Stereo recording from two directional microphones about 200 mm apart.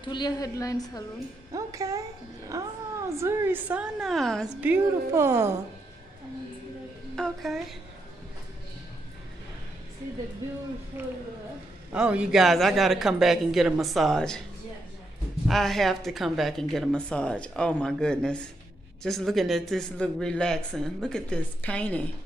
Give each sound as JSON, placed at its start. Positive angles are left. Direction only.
{"t": 0.1, "sound": "a woman's voice", "side_deg": 20}
{"t": 1.5, "sound": "a woman's voice", "side_deg": -15}
{"t": 4.6, "sound": "a woman's voice", "side_deg": -10}
{"t": 7.2, "sound": "speech", "side_deg": 0}
{"t": 10.9, "sound": "a woman's voice", "side_deg": -10}
{"t": 15.4, "sound": "speech", "side_deg": 0}